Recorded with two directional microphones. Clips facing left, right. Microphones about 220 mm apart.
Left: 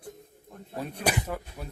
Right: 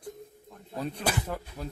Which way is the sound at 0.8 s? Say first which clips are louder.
Left 1 dB; 10° left (ahead or behind).